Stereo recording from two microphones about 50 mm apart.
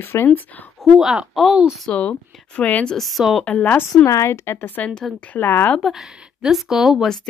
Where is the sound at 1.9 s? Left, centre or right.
Left.